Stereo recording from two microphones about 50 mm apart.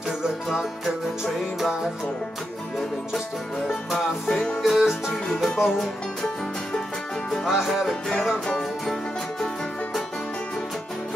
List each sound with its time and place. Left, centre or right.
1.2 s music: centre
4.3 s music: centre
4.6 s music: centre
7.5 s music: centre